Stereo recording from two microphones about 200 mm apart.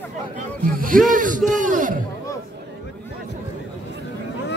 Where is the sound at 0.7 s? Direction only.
45° right (ahead or behind).